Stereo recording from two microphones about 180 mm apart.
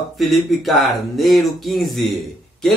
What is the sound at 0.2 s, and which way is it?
Speech, centre (ahead or behind).